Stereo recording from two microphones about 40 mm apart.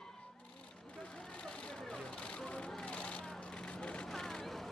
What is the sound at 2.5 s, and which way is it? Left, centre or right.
Vehicle, left.